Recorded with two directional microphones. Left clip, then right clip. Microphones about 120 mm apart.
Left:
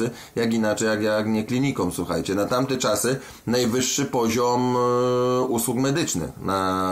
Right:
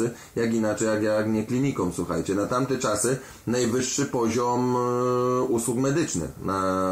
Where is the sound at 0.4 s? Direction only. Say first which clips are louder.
Left 2 dB; 20° left (ahead or behind).